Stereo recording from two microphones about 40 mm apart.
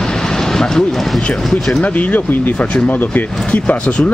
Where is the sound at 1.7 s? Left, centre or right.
Left.